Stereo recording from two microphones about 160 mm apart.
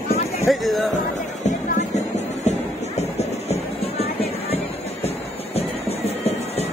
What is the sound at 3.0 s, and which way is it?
Music, 40° left (ahead or behind).